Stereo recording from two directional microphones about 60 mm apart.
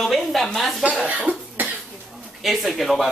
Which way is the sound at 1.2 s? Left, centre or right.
Centre.